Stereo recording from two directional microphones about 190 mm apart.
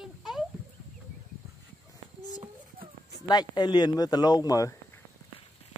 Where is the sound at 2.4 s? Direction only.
30° right (ahead or behind).